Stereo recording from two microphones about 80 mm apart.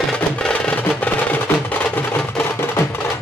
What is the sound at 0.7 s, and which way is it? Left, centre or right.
Music, centre.